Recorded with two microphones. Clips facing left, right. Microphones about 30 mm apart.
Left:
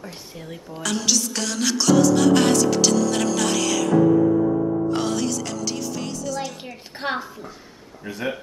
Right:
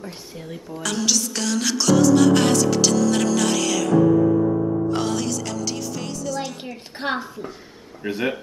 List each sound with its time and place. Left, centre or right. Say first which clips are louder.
0.0 s music: right 1 dB; centre
4.9 s music: even; centre
8.0 s speech: right 5 dB; right